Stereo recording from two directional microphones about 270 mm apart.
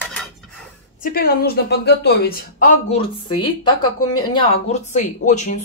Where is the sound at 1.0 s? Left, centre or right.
Left.